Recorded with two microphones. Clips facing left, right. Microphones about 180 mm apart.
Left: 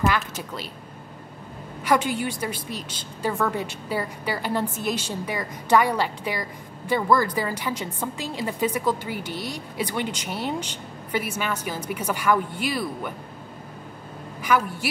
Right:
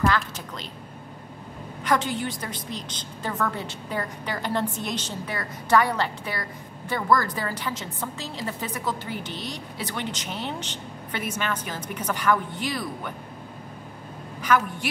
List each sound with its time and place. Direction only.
0.0 s a woman's voice: 10° left (ahead or behind)
1.9 s a woman's voice: 10° left (ahead or behind)
14.4 s a woman's voice: 10° left (ahead or behind)